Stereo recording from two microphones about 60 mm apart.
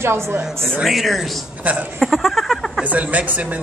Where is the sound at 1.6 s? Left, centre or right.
Right.